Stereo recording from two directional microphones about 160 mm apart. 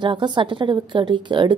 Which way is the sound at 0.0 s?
30° right (ahead or behind).